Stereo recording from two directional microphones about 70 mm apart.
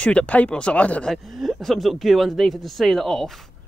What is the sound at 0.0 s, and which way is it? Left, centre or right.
Speech, centre.